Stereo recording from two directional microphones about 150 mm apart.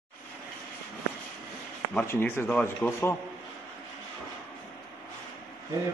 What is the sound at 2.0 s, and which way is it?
A man's voice, 15° left (ahead or behind).